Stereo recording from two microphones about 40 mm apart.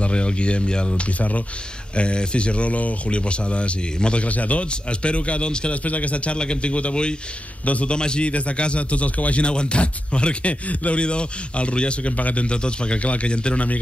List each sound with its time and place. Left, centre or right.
0.0 s speech: left
5.9 s a man's voice: left